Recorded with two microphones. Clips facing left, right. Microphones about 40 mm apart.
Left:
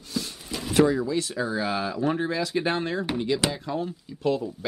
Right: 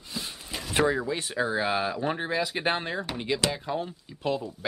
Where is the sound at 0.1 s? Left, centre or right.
Right.